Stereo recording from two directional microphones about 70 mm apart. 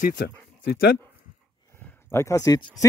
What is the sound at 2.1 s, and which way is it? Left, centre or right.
Speech, left.